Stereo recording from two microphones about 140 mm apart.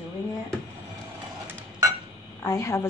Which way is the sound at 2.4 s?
20° left (ahead or behind).